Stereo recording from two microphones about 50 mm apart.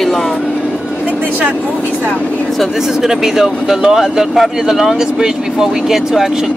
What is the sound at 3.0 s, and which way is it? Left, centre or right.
Speech, centre.